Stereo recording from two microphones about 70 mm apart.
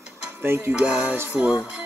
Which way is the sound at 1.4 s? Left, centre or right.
Centre.